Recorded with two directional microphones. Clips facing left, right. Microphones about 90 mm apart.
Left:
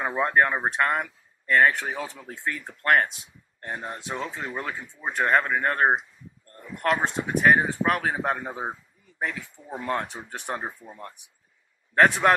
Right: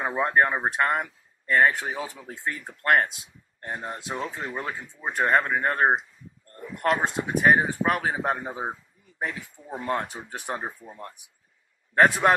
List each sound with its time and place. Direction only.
0.0 s speech: 5° right (ahead or behind)
9.8 s a man's voice: 5° right (ahead or behind)